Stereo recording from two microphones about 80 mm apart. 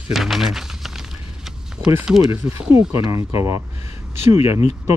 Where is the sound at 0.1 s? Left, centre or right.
Centre.